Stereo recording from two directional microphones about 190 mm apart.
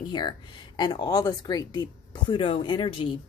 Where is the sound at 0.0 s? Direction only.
25° left (ahead or behind).